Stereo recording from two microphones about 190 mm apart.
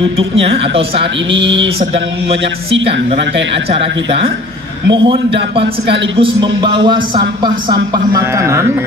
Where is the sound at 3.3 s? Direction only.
70° right (ahead or behind).